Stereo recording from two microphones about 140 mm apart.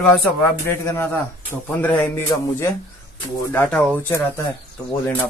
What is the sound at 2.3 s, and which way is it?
Speech, 20° left (ahead or behind).